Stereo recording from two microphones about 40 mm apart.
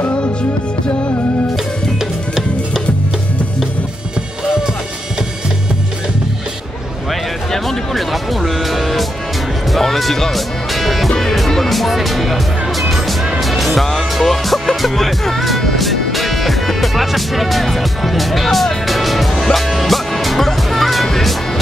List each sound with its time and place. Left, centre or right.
0.2 s music: left
7.5 s music: centre
13.4 s music: centre